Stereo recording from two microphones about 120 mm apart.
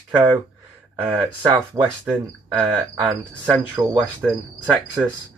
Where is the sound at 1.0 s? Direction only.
15° right (ahead or behind).